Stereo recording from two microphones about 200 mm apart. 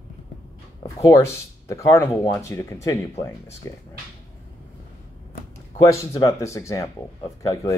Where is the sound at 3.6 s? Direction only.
15° left (ahead or behind).